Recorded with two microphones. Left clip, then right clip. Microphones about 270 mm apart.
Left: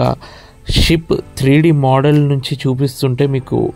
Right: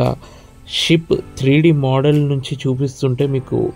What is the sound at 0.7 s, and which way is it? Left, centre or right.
Speech, left.